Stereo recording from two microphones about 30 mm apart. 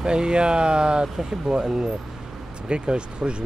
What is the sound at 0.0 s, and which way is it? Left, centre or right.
Speech, right.